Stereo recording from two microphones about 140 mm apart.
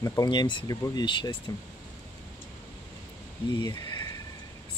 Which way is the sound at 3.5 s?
30° left (ahead or behind).